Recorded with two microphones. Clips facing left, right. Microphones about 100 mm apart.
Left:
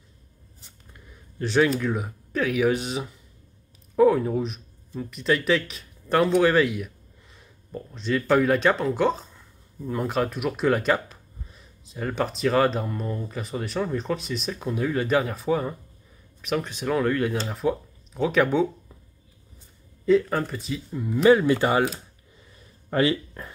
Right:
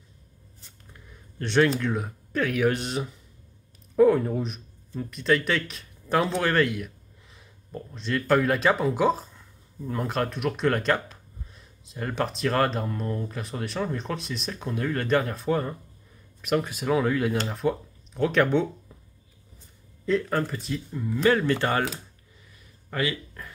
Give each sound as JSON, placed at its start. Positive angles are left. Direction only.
{"t": 1.4, "sound": "speech", "side_deg": 0}
{"t": 20.1, "sound": "speech", "side_deg": 0}
{"t": 21.0, "sound": "speech", "side_deg": 10}
{"t": 22.8, "sound": "speech", "side_deg": 30}